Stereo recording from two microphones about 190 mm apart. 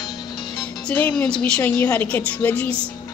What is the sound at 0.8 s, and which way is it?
A woman's voice, 10° left (ahead or behind).